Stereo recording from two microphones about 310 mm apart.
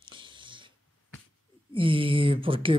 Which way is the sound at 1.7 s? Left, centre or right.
Centre.